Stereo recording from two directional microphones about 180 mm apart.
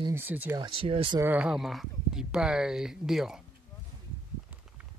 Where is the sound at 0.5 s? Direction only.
30° right (ahead or behind).